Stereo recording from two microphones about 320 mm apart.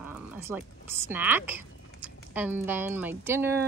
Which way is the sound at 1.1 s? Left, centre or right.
Centre.